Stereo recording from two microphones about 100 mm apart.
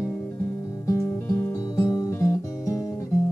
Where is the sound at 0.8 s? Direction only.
30° left (ahead or behind).